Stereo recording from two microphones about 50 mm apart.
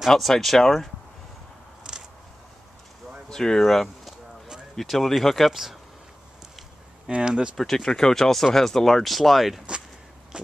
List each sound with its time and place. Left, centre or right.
0.1 s speech: centre
1.8 s a sound: centre
3.3 s speech: centre
7.1 s speech: centre
7.5 s speech: centre
10.3 s a sound: centre